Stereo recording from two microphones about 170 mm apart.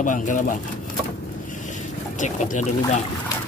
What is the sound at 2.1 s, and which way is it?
Speech, 45° left (ahead or behind).